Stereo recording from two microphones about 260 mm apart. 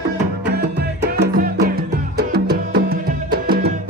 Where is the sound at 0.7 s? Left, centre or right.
Right.